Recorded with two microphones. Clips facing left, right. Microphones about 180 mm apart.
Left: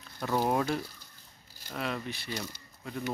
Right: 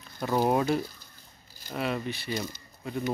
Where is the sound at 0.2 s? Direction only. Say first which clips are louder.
Right 3 dB; 10° right (ahead or behind).